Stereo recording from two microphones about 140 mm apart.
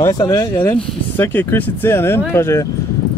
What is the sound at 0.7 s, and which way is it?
Speech, 15° left (ahead or behind).